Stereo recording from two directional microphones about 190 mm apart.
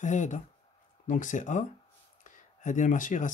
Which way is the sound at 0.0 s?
40° left (ahead or behind).